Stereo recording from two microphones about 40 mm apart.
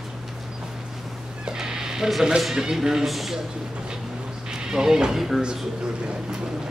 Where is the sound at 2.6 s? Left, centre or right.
Centre.